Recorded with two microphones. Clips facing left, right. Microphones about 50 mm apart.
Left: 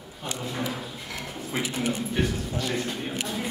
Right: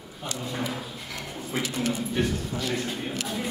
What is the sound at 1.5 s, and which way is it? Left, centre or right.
Speech, centre.